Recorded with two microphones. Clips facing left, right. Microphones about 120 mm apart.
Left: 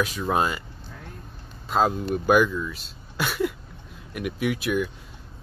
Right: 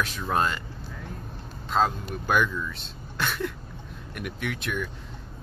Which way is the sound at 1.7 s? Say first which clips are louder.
Left 3 dB; 10° left (ahead or behind).